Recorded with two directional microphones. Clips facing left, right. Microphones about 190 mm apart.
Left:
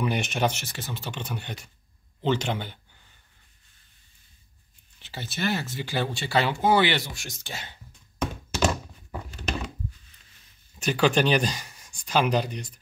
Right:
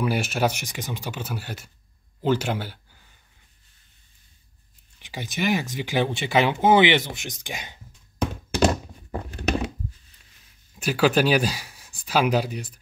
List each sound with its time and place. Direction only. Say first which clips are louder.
0.0 s speech: right 2 dB; 5° right (ahead or behind)
4.9 s speech: right 4 dB; 15° right (ahead or behind)
8.5 s thunk: right 4 dB; 35° right (ahead or behind)
9.3 s a sound: right 8 dB; 60° right (ahead or behind)
10.7 s speech: right 2 dB; 5° right (ahead or behind)